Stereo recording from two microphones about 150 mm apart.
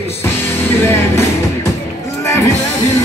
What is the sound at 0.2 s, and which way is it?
Music, 15° left (ahead or behind).